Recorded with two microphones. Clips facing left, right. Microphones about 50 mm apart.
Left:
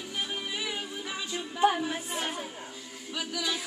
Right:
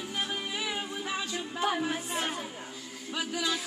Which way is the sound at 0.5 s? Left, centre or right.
Centre.